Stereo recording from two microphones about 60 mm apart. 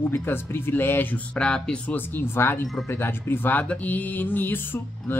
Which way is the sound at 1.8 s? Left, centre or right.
Left.